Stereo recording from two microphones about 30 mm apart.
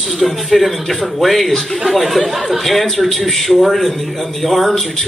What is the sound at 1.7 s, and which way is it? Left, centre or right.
A man's voice, centre.